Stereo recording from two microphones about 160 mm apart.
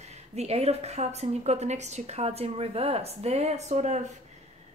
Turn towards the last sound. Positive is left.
turn(degrees=-45)  # may be behind; listen again after turning